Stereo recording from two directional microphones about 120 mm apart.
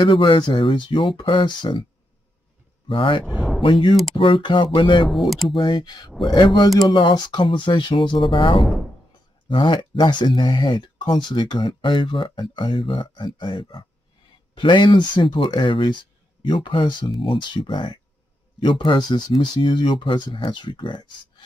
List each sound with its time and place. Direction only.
0.0 s speech: 45° left (ahead or behind)
2.9 s speech: 45° left (ahead or behind)
3.3 s a sound: centre (ahead or behind)
3.6 s speech: 40° left (ahead or behind)
5.1 s speech: centre (ahead or behind)
5.5 s speech: 45° left (ahead or behind)